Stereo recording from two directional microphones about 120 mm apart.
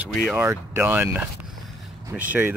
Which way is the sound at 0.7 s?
15° right (ahead or behind).